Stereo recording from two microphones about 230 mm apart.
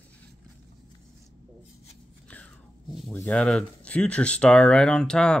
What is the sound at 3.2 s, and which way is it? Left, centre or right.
Speech, centre.